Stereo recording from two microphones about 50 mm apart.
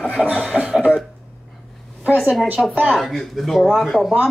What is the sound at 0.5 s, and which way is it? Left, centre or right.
Cough, centre.